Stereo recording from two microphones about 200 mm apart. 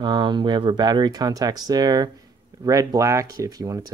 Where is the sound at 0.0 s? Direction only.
20° right (ahead or behind).